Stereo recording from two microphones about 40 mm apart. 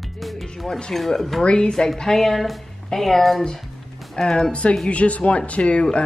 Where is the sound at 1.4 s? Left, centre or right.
Left.